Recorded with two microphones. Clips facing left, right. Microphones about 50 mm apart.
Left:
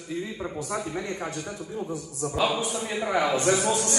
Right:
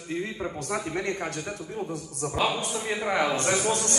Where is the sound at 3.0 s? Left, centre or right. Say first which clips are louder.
Left 2 dB; right.